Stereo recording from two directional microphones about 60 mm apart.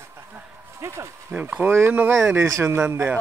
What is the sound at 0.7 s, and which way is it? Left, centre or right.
Speech, right.